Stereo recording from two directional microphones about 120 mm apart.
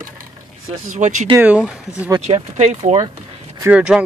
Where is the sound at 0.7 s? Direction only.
85° right.